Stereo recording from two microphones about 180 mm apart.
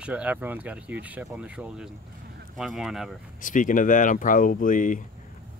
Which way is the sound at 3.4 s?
45° left (ahead or behind).